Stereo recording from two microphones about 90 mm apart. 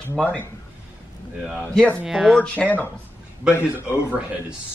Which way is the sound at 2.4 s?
15° left (ahead or behind).